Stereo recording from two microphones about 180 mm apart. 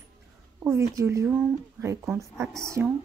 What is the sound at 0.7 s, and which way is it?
Speech, 15° right (ahead or behind).